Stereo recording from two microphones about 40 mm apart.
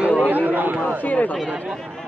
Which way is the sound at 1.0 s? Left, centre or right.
Left.